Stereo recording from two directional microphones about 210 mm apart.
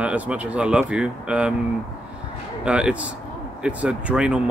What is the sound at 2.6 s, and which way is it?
Speech, 5° right (ahead or behind).